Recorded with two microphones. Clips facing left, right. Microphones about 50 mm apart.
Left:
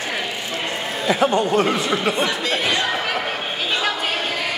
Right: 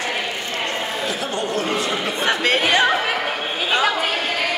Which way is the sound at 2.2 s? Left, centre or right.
Right.